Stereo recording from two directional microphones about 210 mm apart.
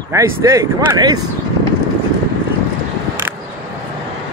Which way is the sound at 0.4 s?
15° right (ahead or behind).